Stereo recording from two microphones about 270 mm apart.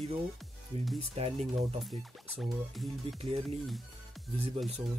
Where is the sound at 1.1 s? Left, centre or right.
Right.